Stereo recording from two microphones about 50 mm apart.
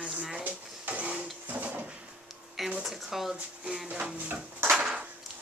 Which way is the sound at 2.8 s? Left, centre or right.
Centre.